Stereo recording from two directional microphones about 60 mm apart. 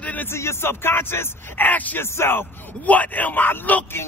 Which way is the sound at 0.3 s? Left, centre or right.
Left.